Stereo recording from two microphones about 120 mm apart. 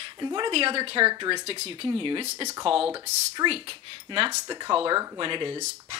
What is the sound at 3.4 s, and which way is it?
Speech, 50° right (ahead or behind).